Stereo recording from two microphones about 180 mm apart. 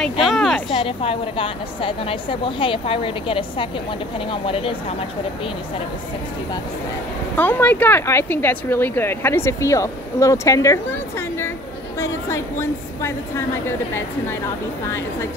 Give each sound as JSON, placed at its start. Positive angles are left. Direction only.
{"t": 0.2, "sound": "speech", "side_deg": 0}
{"t": 0.7, "sound": "a woman's voice", "side_deg": 30}
{"t": 7.3, "sound": "a woman's voice", "side_deg": 10}